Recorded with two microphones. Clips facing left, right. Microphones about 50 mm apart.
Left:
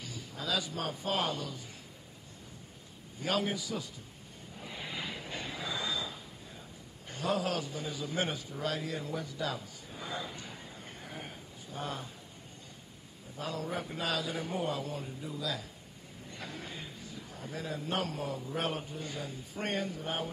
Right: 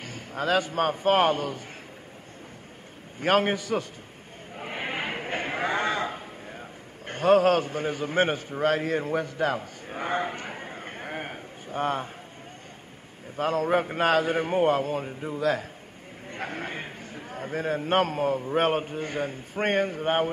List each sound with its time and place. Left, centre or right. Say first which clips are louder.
0.0 s a man's voice: right 10 dB; right
3.2 s a man's voice: right 10 dB; right
4.6 s a sound: right 10 dB; right
7.1 s a man's voice: right 13 dB; right
13.4 s a man's voice: right 13 dB; right